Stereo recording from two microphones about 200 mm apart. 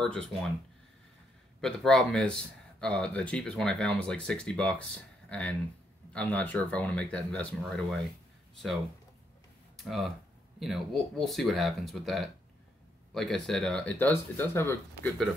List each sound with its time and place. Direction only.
0.0 s speech: 5° left (ahead or behind)
1.6 s speech: 5° left (ahead or behind)
9.8 s speech: centre (ahead or behind)